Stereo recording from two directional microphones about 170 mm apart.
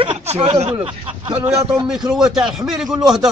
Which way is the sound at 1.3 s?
10° right (ahead or behind).